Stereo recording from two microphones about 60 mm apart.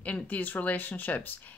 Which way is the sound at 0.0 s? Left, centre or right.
Left.